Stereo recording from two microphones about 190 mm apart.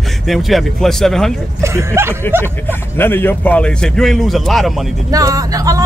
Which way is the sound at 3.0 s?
10° left (ahead or behind).